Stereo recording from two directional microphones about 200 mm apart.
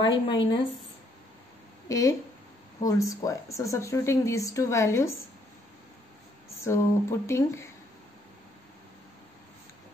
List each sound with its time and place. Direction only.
0.1 s speech: 65° left (ahead or behind)
1.9 s a woman's voice: 15° left (ahead or behind)
6.6 s a woman's voice: 15° left (ahead or behind)